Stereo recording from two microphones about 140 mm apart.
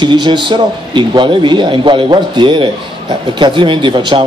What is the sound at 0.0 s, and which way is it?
A man's voice, 35° right (ahead or behind).